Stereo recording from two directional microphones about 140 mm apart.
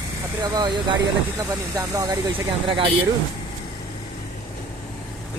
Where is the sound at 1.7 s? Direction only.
25° right (ahead or behind).